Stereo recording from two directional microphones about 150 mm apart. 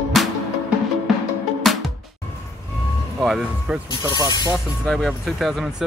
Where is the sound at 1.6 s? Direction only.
Centre (ahead or behind).